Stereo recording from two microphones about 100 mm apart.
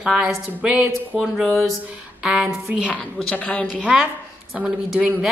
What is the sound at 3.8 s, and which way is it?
A woman's voice, 5° right (ahead or behind).